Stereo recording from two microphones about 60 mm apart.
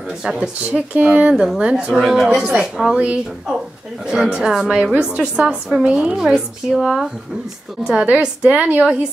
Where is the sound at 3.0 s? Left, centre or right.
Centre.